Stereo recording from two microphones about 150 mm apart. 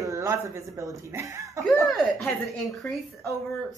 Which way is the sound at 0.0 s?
20° right (ahead or behind).